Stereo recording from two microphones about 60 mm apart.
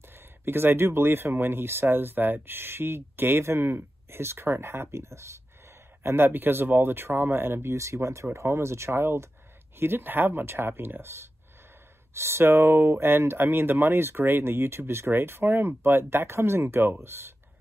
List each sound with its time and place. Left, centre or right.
0.1 s speech: right
6.0 s speech: right